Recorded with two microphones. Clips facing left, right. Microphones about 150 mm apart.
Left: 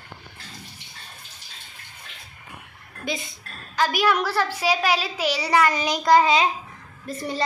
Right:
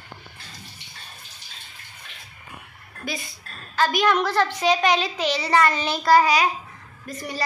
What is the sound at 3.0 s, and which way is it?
Speech, 20° left (ahead or behind).